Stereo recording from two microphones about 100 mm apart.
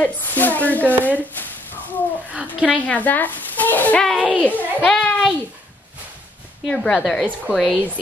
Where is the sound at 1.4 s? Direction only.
20° left (ahead or behind).